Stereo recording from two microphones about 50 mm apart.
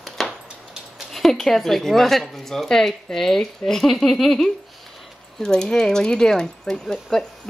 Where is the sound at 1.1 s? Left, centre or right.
Centre.